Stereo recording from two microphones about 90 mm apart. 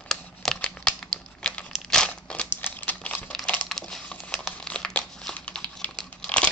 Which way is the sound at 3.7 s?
5° left (ahead or behind).